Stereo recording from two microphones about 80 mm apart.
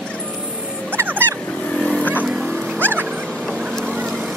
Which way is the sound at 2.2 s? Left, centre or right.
Centre.